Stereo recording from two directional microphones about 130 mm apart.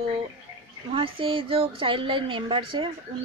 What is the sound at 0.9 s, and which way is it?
A woman's voice, 45° right (ahead or behind).